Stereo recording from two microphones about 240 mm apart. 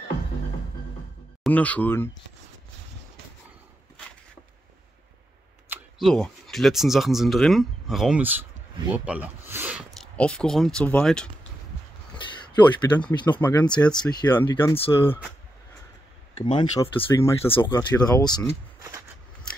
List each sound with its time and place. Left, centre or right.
1.4 s speech: centre
5.7 s speech: centre
9.5 s a sound: centre
10.1 s speech: centre
12.5 s speech: centre
13.3 s speech: centre
16.5 s speech: centre
18.8 s a sound: centre